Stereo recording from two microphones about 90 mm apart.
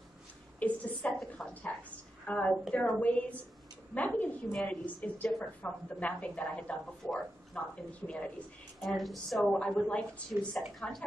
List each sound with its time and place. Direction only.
0.6 s a sound: 15° left (ahead or behind)
2.2 s a woman's voice: 15° left (ahead or behind)
8.8 s a woman's voice: centre (ahead or behind)